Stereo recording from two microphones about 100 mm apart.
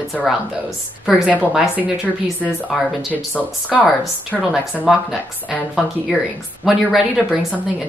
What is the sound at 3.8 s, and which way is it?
Speech, 5° right (ahead or behind).